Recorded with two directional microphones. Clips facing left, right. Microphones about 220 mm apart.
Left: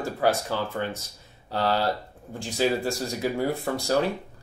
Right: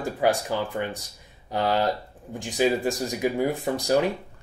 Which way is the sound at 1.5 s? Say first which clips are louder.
Right 1 dB; 15° right (ahead or behind).